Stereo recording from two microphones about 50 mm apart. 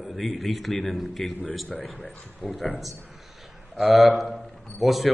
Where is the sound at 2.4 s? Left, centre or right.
Centre.